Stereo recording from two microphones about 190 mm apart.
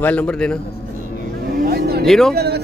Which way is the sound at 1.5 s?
55° right (ahead or behind).